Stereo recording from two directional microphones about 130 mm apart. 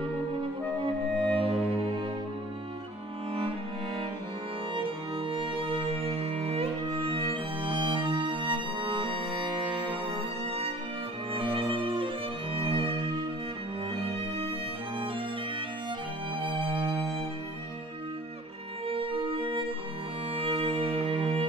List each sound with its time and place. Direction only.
1.2 s music: 45° right (ahead or behind)
5.4 s music: 40° right (ahead or behind)
7.7 s music: 35° right (ahead or behind)
9.3 s music: centre (ahead or behind)
11.3 s music: 45° right (ahead or behind)
12.5 s violin: 45° right (ahead or behind)
16.3 s music: 40° right (ahead or behind)
16.7 s music: centre (ahead or behind)
18.9 s music: 45° right (ahead or behind)
20.9 s music: centre (ahead or behind)